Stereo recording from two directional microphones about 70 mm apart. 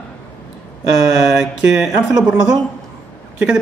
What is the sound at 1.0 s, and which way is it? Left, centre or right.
Speech, centre.